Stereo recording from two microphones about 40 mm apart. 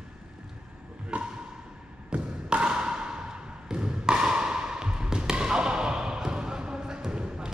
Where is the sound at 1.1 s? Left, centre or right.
Right.